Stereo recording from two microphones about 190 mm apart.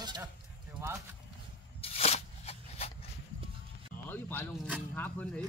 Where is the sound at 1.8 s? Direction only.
30° left (ahead or behind).